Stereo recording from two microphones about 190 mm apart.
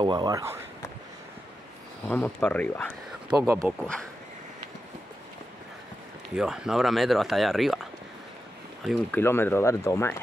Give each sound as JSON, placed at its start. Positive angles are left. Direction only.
{"t": 0.0, "sound": "speech", "side_deg": -25}
{"t": 2.0, "sound": "speech", "side_deg": 10}
{"t": 3.3, "sound": "speech", "side_deg": -10}
{"t": 3.8, "sound": "speech", "side_deg": 5}
{"t": 6.3, "sound": "speech", "side_deg": -5}
{"t": 8.8, "sound": "speech", "side_deg": 5}